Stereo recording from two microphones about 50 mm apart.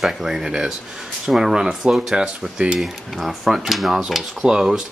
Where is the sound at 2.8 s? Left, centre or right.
Centre.